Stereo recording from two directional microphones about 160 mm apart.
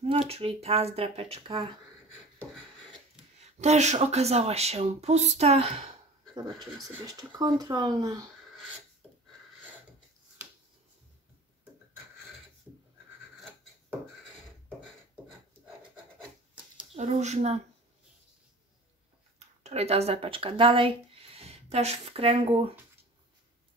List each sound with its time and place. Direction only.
0.0 s speech: 40° right (ahead or behind)
3.3 s speech: 45° right (ahead or behind)
6.3 s speech: 25° right (ahead or behind)
16.9 s speech: 45° right (ahead or behind)
19.6 s speech: 40° right (ahead or behind)